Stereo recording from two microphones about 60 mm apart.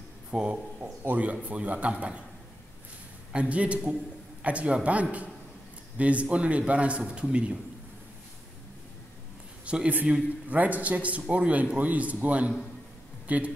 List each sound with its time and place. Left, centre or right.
0.3 s a man's voice: centre
3.3 s a man's voice: right
9.7 s a man's voice: centre